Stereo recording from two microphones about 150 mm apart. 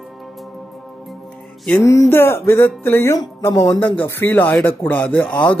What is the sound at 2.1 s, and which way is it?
Speech, 15° left (ahead or behind).